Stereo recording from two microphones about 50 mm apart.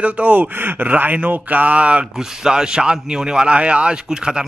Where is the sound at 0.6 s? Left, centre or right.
Right.